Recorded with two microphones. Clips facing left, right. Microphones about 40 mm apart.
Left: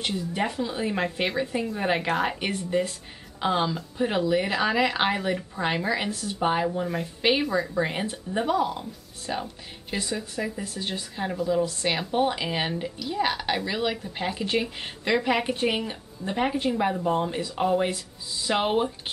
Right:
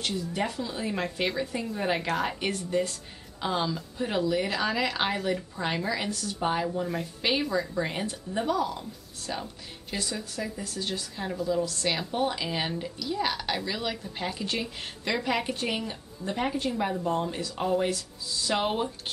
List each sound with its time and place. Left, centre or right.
0.0 s a woman's voice: centre